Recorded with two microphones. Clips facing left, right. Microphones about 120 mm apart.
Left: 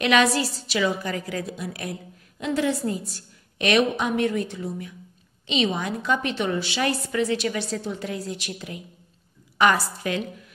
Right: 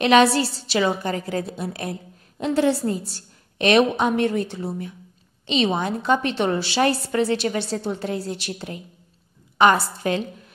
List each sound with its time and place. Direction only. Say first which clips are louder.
0.0 s a woman's voice: right 4 dB; 30° right (ahead or behind)